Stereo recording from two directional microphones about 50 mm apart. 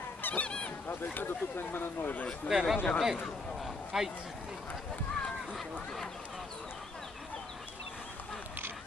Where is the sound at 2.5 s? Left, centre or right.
Centre.